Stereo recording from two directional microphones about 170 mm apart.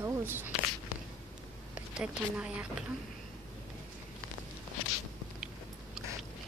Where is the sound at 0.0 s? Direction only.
15° right (ahead or behind).